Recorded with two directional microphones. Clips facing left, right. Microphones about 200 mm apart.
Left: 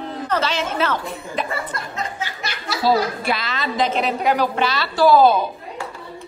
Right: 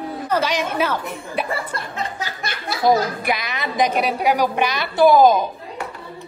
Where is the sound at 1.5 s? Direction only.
30° right (ahead or behind).